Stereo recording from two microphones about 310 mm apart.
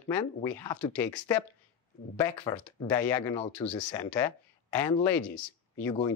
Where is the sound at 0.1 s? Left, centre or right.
Centre.